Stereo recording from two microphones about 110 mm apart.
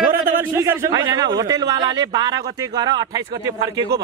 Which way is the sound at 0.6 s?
30° right (ahead or behind).